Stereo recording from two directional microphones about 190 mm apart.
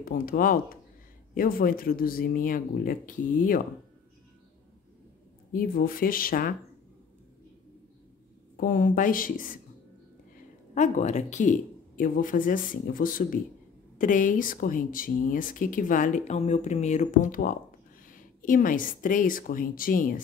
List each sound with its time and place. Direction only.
0.0 s speech: 50° left (ahead or behind)
5.5 s speech: 50° left (ahead or behind)
8.5 s speech: 45° left (ahead or behind)
10.7 s speech: 40° left (ahead or behind)